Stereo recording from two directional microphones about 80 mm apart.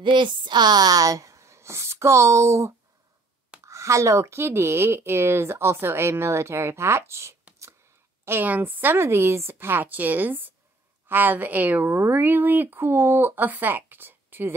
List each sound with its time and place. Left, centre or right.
0.0 s speech: right
8.3 s a woman's voice: right